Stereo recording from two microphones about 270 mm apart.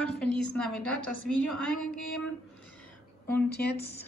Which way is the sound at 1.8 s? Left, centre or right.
Left.